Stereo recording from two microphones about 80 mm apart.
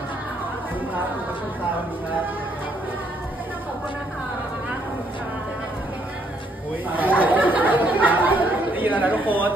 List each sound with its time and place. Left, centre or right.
6.9 s speech: right